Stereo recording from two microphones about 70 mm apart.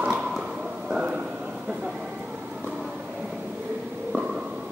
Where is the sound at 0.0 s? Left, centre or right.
Centre.